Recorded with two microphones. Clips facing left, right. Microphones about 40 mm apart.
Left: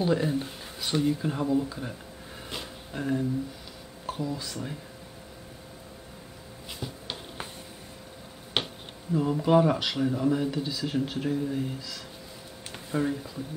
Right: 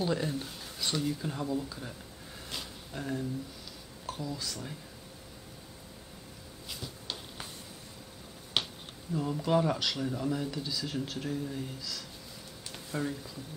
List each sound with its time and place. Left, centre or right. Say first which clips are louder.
0.0 s speech: left 6 dB; centre
2.5 s a sound: left 4 dB; centre
4.0 s speech: left 5 dB; centre
6.7 s a sound: left 4 dB; left
8.6 s finger snapping: left 3 dB; left
9.1 s speech: left 6 dB; centre